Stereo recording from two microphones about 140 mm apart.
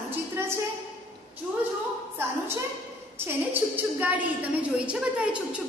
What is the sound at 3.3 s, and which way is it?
A woman's voice, 15° right (ahead or behind).